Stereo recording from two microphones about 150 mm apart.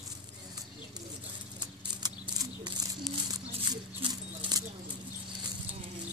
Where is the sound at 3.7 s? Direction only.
30° right (ahead or behind).